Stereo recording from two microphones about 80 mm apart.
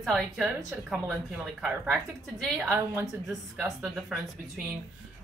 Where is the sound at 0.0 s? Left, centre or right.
Centre.